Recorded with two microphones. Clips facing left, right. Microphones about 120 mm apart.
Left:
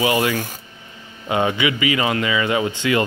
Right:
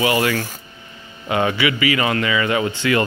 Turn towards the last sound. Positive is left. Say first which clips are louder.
# even
turn(degrees=20)  # may be behind; listen again after turning